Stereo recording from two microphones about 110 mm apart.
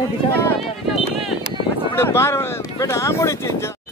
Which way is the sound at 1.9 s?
20° left (ahead or behind).